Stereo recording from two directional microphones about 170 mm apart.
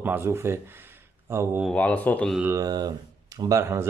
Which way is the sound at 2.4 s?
15° right (ahead or behind).